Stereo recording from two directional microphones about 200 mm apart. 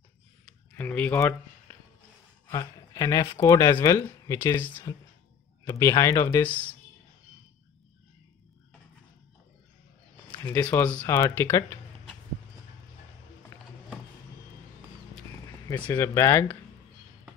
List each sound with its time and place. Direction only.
0.7 s speech: 10° left (ahead or behind)
10.4 s speech: 10° left (ahead or behind)
13.5 s a sound: 15° left (ahead or behind)
15.7 s speech: 15° left (ahead or behind)